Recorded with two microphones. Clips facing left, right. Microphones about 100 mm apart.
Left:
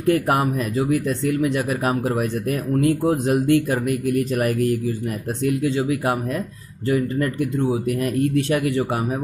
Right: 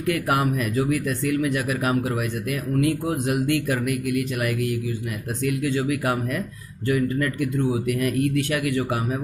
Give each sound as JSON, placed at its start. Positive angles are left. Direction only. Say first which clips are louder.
{"t": 0.0, "sound": "speech", "louder": "left 4 dB", "side_deg": 30}